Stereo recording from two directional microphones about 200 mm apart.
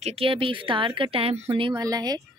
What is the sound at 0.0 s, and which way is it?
Speech, 30° right (ahead or behind).